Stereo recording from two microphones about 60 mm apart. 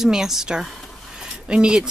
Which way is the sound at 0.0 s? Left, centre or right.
Centre.